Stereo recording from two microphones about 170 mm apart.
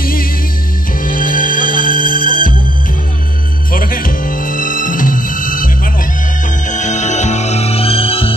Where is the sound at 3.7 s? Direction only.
55° left (ahead or behind).